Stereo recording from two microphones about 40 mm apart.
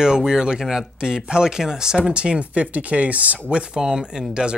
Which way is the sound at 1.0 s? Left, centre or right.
Centre.